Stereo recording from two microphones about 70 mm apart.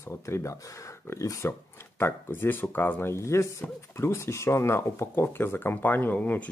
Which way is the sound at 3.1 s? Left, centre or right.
Left.